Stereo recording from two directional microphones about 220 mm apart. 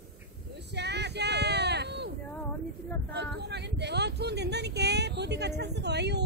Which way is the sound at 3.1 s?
50° right (ahead or behind).